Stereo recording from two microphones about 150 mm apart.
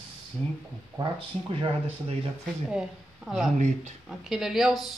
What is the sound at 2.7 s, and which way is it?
A woman's voice, centre (ahead or behind).